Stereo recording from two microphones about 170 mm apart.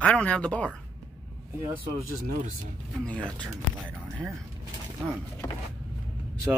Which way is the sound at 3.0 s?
5° left (ahead or behind).